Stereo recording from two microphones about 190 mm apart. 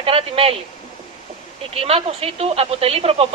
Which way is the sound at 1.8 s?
30° right (ahead or behind).